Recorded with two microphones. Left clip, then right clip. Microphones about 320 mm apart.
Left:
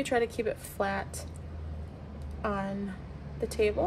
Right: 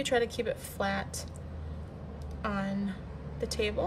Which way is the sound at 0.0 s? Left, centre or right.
Centre.